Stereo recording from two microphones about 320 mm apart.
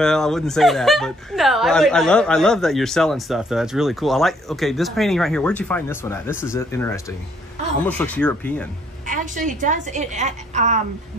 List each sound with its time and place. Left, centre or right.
0.0 s speech: centre
9.0 s a woman's voice: right